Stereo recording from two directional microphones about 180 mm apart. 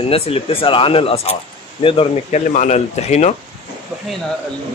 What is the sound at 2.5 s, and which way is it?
Speech, 40° left (ahead or behind).